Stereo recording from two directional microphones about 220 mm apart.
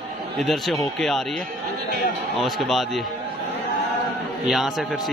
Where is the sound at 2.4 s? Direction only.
Centre (ahead or behind).